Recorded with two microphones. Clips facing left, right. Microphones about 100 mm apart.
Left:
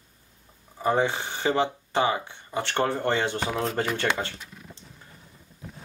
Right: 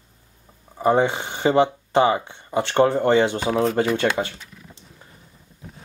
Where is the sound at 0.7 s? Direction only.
20° right (ahead or behind).